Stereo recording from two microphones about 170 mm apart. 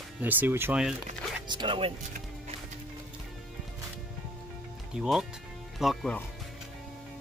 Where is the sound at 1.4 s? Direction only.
25° right (ahead or behind).